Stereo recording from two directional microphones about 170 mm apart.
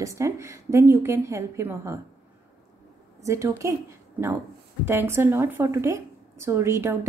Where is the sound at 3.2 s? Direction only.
15° right (ahead or behind).